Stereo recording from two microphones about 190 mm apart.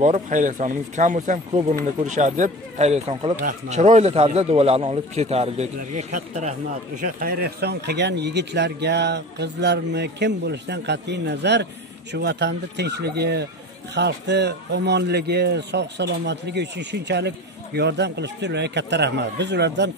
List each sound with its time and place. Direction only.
0.0 s a man's voice: 40° right (ahead or behind)
7.2 s speech: 55° right (ahead or behind)